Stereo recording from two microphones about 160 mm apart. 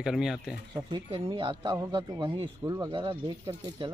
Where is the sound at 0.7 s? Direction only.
25° right (ahead or behind).